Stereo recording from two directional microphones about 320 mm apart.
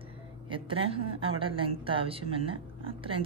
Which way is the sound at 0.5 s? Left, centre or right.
Centre.